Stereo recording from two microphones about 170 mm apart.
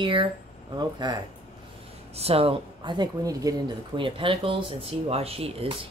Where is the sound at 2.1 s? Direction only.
35° right (ahead or behind).